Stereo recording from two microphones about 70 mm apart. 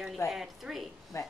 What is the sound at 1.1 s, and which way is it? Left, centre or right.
Speech, left.